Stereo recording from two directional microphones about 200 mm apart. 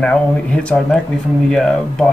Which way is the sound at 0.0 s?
5° left (ahead or behind).